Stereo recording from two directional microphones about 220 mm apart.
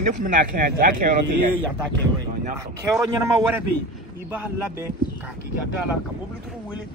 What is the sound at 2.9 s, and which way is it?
A man's voice, 15° right (ahead or behind).